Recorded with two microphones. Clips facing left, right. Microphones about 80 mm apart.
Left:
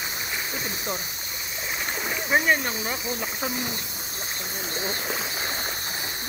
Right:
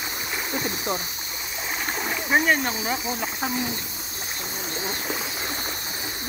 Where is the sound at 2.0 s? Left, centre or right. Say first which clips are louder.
Right 1 dB; centre.